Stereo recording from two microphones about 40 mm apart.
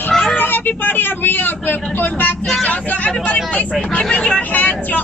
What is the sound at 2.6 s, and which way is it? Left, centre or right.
Speech, left.